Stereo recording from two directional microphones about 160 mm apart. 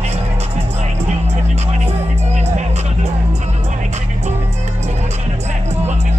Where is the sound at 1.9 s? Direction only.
45° right (ahead or behind).